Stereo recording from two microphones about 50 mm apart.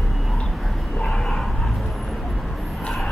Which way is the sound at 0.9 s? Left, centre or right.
Centre.